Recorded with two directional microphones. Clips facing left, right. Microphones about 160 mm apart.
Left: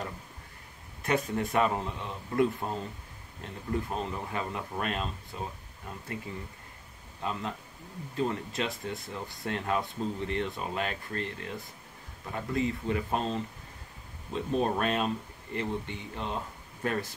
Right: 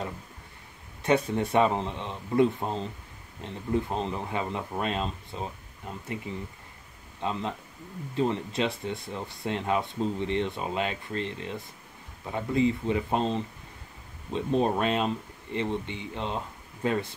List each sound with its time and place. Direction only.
1.0 s speech: 25° right (ahead or behind)
7.2 s speech: 20° right (ahead or behind)